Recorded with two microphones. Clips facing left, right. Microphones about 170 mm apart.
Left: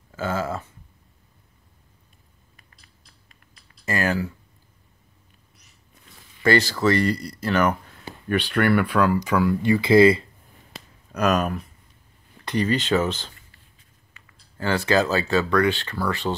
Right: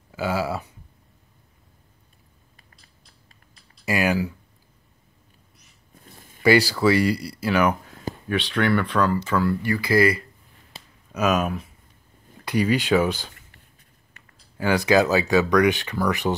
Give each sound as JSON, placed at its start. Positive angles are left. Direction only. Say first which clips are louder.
{"t": 0.1, "sound": "speech", "louder": "right 1 dB", "side_deg": -10}
{"t": 3.8, "sound": "speech", "louder": "right 2 dB", "side_deg": -10}
{"t": 6.0, "sound": "a sound", "louder": "right 4 dB", "side_deg": -50}
{"t": 6.4, "sound": "speech", "louder": "right 2 dB", "side_deg": -10}
{"t": 11.1, "sound": "speech", "louder": "even", "side_deg": 0}
{"t": 14.6, "sound": "speech", "louder": "right 2 dB", "side_deg": -15}